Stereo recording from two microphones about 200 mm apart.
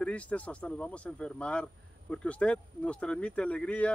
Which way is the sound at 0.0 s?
5° left (ahead or behind).